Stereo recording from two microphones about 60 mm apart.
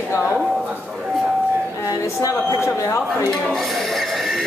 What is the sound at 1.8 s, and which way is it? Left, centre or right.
Speech, left.